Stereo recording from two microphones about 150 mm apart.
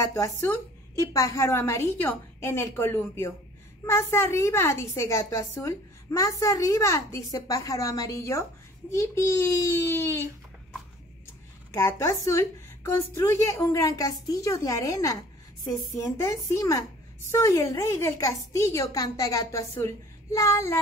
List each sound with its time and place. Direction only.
0.0 s a woman's voice: 20° left (ahead or behind)
11.7 s a woman's voice: 20° left (ahead or behind)